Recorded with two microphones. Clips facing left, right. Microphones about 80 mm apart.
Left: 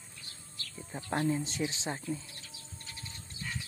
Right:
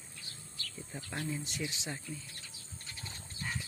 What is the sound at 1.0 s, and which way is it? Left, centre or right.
Speech, left.